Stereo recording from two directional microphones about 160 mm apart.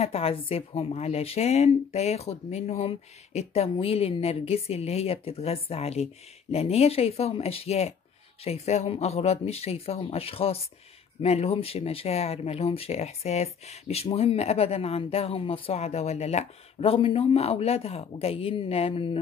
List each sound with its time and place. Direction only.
0.0 s speech: 40° left (ahead or behind)